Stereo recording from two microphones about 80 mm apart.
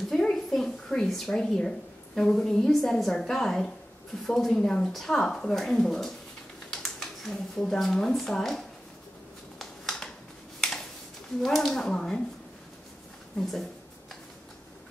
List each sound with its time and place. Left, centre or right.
0.1 s a woman's voice: centre
9.6 s a sound: centre
11.4 s speech: centre
13.4 s speech: centre